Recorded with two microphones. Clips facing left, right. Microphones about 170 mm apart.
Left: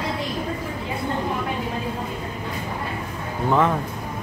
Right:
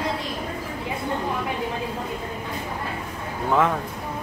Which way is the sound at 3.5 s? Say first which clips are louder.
Left 1 dB; centre (ahead or behind).